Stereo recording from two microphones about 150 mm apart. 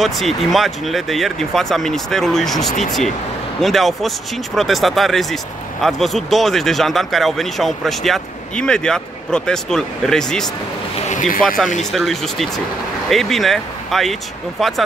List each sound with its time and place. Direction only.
0.0 s speech: centre (ahead or behind)
11.1 s a sound: 60° left (ahead or behind)
11.4 s speech: centre (ahead or behind)